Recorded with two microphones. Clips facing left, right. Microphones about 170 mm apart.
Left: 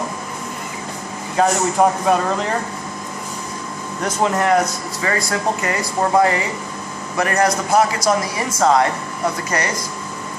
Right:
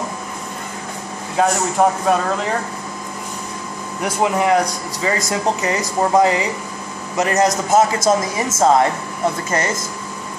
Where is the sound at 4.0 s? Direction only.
10° right (ahead or behind).